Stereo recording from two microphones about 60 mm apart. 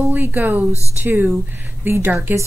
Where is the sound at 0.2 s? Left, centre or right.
Right.